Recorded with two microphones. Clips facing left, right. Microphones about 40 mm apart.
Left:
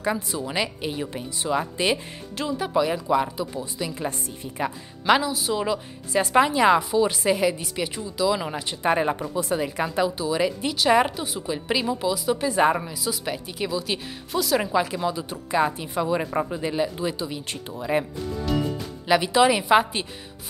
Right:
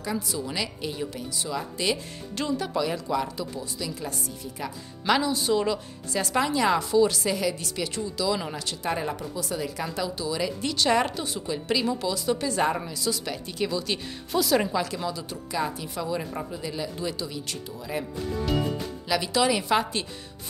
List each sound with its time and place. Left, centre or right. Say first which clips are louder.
0.0 s speech: left 4 dB; left
2.3 s a woman's voice: even; centre
2.6 s speech: left 4 dB; centre
5.2 s a woman's voice: right 1 dB; centre
6.1 s a woman's voice: left 6 dB; left; by 14.7 s centre
14.7 s speech: left 5 dB; centre; by 18.0 s left
19.0 s speech: left 6 dB; left